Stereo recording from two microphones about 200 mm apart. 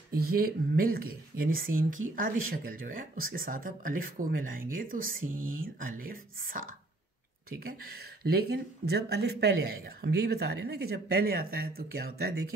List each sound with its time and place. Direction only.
0.2 s speech: 50° right (ahead or behind)